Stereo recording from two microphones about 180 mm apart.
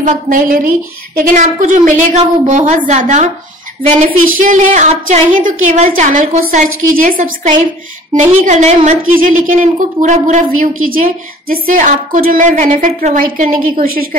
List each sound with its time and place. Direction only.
0.0 s a woman's voice: 45° right (ahead or behind)
4.4 s a woman's voice: 45° right (ahead or behind)